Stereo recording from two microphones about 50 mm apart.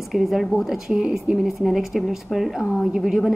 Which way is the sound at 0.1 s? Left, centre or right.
Centre.